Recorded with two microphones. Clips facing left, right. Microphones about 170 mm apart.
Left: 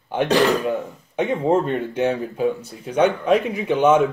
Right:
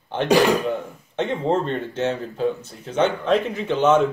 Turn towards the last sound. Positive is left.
turn(degrees=10)  # may be behind; listen again after turning